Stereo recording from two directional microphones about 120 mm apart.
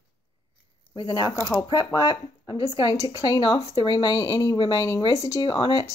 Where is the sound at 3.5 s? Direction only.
60° left (ahead or behind).